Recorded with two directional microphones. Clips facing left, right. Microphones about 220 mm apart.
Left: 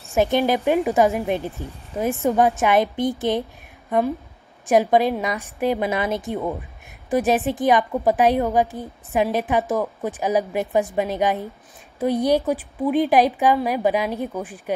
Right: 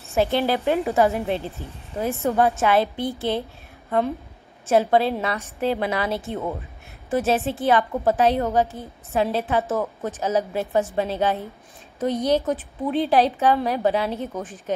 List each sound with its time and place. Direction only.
0.1 s a woman's voice: 15° left (ahead or behind)